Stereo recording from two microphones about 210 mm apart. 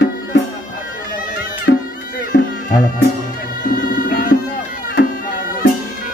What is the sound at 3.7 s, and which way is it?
Music, 40° left (ahead or behind).